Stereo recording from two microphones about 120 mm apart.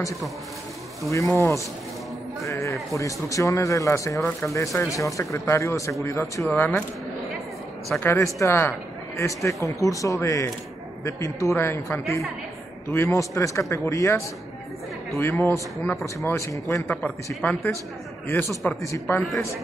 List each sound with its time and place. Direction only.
1.1 s a man's voice: 25° left (ahead or behind)
8.0 s a man's voice: 25° left (ahead or behind)
17.3 s speech: 5° left (ahead or behind)
18.8 s a man's voice: 20° left (ahead or behind)